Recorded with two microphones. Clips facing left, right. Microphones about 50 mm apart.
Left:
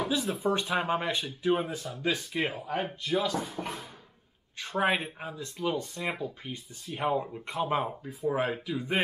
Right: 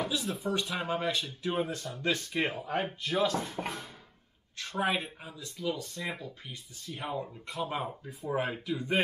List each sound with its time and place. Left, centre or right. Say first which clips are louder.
0.2 s speech: left 4 dB; centre
0.5 s speech: left 4 dB; left; by 3.5 s centre
4.6 s speech: left 3 dB; centre
5.9 s speech: left 4 dB; centre
8.1 s speech: left 3 dB; centre